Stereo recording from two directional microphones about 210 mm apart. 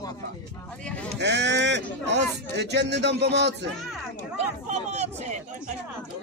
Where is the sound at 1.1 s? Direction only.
55° right (ahead or behind).